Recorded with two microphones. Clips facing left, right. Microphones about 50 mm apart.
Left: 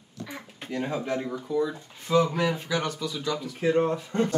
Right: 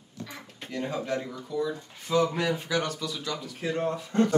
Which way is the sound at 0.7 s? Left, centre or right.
Centre.